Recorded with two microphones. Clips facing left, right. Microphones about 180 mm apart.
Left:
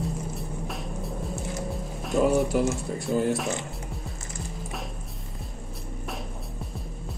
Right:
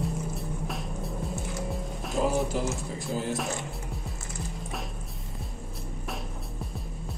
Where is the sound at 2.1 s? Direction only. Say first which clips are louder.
Left 5 dB; 60° left (ahead or behind).